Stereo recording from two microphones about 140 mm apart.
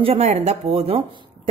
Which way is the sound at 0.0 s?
45° right (ahead or behind).